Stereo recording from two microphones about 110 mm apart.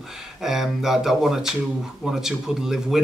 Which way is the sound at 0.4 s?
5° right (ahead or behind).